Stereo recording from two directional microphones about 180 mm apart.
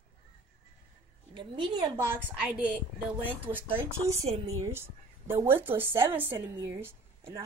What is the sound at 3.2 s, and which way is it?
Speech, 10° right (ahead or behind).